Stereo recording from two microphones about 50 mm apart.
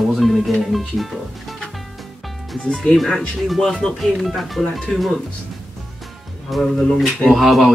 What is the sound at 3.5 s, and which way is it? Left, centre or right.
Speech, centre.